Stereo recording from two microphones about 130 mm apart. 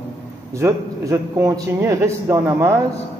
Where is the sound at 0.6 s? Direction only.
20° right (ahead or behind).